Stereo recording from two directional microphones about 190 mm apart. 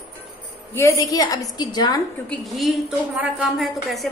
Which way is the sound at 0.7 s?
15° left (ahead or behind).